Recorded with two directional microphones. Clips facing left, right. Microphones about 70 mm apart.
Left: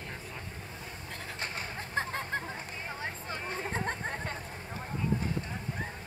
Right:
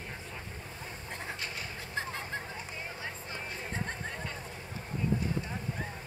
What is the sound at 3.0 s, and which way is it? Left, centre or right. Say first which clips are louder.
Hubbub: left 3 dB; left.